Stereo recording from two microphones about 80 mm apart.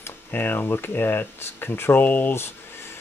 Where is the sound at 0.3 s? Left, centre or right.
Left.